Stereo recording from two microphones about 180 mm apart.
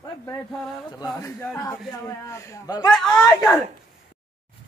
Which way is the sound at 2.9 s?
Centre (ahead or behind).